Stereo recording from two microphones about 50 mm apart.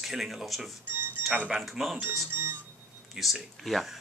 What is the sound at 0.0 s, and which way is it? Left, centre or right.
Speech, centre.